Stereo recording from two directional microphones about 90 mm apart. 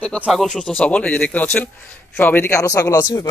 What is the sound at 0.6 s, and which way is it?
Speech, 15° left (ahead or behind).